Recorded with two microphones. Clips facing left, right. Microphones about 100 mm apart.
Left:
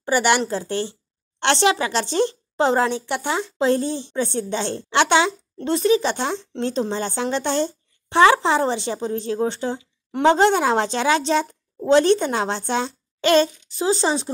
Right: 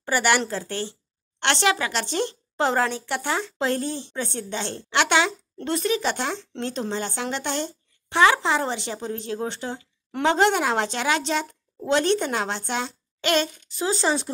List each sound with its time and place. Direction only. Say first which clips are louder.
0.0 s a woman's voice: left 3 dB; 20° left (ahead or behind)